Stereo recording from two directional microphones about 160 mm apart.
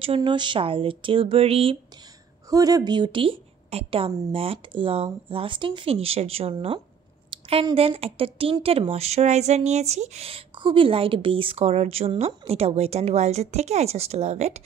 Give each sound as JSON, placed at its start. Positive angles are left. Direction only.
{"t": 0.0, "sound": "a woman's voice", "side_deg": -35}
{"t": 2.5, "sound": "a woman's voice", "side_deg": -20}
{"t": 7.2, "sound": "a sound", "side_deg": -35}
{"t": 7.7, "sound": "a woman's voice", "side_deg": -35}